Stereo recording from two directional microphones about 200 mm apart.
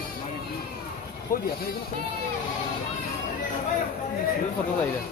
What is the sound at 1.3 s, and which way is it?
Speech, 45° left (ahead or behind).